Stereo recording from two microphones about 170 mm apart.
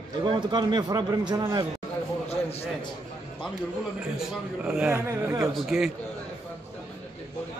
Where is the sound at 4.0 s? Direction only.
5° right (ahead or behind).